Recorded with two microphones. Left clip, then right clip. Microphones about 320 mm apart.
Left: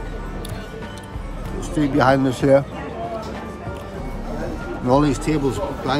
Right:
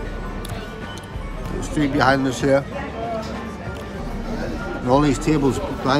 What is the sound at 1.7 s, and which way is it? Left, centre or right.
Speech, centre.